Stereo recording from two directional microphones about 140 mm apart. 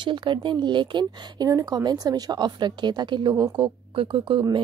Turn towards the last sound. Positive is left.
turn(degrees=-35)  # may be behind; listen again after turning